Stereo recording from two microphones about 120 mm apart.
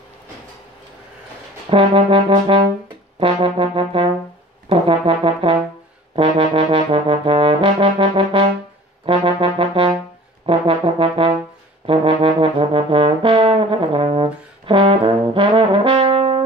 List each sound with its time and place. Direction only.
1.7 s trombone: 50° right (ahead or behind)
3.2 s brass instrument: 50° right (ahead or behind)
4.6 s trombone: 50° right (ahead or behind)